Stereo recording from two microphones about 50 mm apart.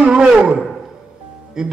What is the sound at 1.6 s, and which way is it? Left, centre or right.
Speech, centre.